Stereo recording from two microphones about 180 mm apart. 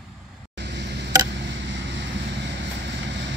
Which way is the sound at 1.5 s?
80° right.